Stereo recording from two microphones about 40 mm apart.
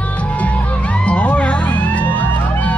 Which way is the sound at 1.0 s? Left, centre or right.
Left.